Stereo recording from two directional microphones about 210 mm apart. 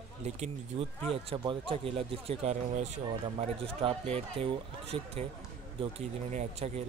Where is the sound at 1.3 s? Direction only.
25° right (ahead or behind).